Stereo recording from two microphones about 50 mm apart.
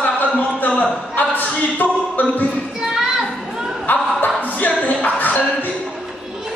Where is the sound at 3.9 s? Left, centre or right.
Left.